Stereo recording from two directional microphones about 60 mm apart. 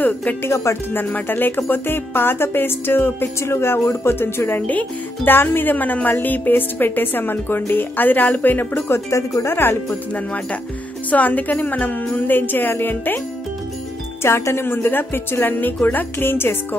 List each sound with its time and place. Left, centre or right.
0.0 s speech: left
0.4 s speech: left
0.9 s speech: left
4.6 s speech: left
8.9 s speech: left
9.8 s speech: left
14.2 s speech: left